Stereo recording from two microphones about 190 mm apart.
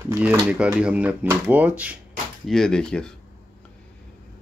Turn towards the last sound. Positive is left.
turn(degrees=5)  # may be behind; listen again after turning